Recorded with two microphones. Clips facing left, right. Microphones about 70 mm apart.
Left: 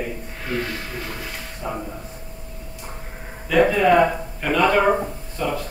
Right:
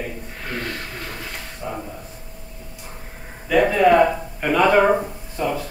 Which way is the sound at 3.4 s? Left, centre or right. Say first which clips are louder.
Right 1 dB; centre.